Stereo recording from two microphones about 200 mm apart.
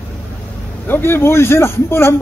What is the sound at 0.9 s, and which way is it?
A man's voice, 10° left (ahead or behind).